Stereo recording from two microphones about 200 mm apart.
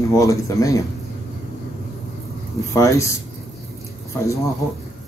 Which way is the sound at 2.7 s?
15° left (ahead or behind).